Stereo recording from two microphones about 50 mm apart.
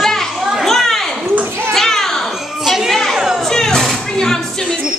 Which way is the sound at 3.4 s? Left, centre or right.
Centre.